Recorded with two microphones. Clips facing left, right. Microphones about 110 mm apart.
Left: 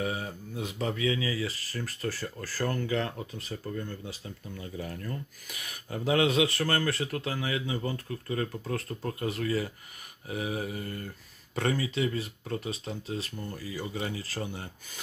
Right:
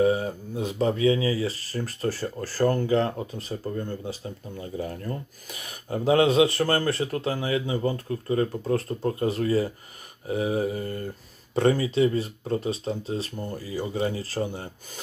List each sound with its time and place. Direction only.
0.0 s speech: 35° right (ahead or behind)